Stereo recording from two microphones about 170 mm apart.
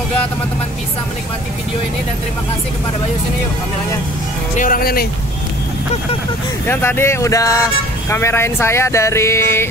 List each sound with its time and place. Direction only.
4.6 s speech: 55° left (ahead or behind)
6.6 s speech: 10° left (ahead or behind)